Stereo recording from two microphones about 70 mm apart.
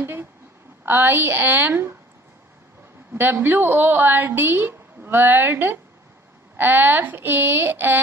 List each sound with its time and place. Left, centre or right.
0.0 s a sound: right
0.8 s a woman's voice: right
3.1 s a woman's voice: right